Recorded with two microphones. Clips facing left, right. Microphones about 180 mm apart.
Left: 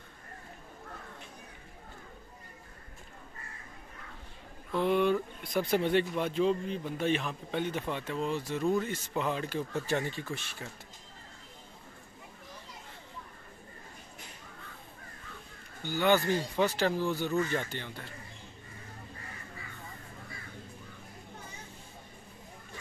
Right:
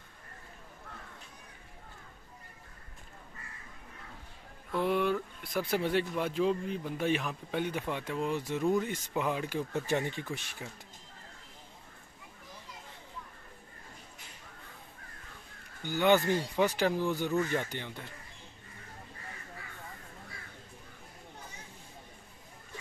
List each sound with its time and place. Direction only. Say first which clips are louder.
4.7 s a sound: left 2 dB; 5° right (ahead or behind)
5.6 s speech: left 3 dB; 5° right (ahead or behind)
15.8 s speech: right 1 dB; 15° right (ahead or behind)